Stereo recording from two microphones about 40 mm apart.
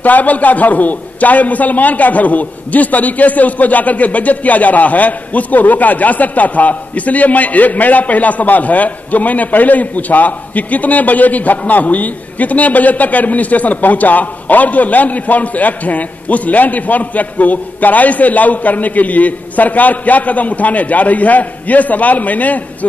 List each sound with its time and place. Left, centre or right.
0.0 s a man's voice: left